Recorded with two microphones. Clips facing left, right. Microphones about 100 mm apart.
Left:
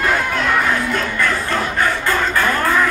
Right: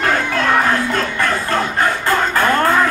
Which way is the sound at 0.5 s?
35° right (ahead or behind).